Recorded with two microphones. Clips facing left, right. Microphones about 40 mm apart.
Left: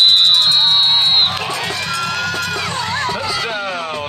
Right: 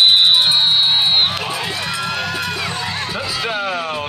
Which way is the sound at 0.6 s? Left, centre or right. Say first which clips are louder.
Left 1 dB; centre.